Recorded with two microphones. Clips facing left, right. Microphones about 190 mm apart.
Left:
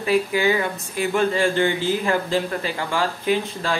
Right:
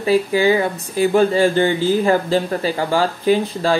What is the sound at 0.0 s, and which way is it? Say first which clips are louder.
Speech: right 4 dB; 30° right (ahead or behind).